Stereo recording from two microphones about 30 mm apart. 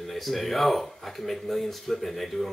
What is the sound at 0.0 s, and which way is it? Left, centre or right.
Speech, centre.